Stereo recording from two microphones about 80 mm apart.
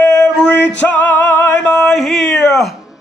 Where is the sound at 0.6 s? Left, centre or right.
Centre.